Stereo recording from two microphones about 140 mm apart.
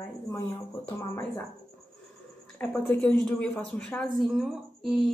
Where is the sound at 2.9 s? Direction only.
10° left (ahead or behind).